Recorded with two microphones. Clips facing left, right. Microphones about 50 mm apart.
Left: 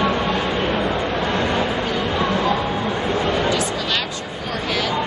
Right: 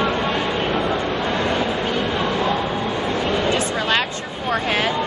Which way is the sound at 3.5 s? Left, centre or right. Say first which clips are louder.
Right 2 dB; right.